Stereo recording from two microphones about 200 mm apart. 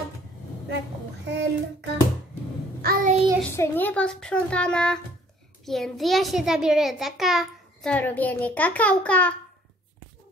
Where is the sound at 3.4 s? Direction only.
10° left (ahead or behind).